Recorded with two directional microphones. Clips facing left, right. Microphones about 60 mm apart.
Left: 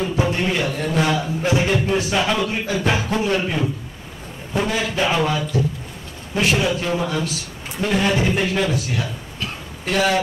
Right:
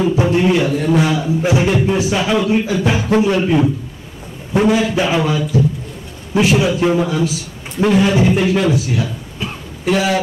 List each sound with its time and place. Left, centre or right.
0.0 s speech: centre
4.6 s speech: centre
6.8 s a man's voice: centre
7.1 s speech: centre
9.4 s throat clearing: centre